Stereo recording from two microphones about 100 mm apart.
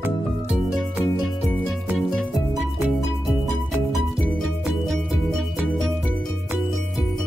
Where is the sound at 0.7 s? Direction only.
5° right (ahead or behind).